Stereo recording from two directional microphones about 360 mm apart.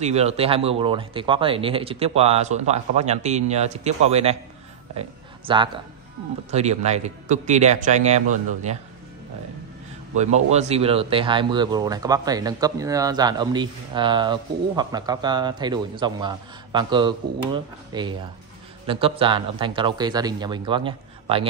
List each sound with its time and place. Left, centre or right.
0.0 s speech: centre
5.5 s speech: centre
10.1 s speech: centre